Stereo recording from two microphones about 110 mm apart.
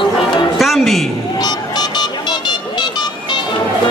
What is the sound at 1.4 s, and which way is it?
Vehicle, 40° left (ahead or behind).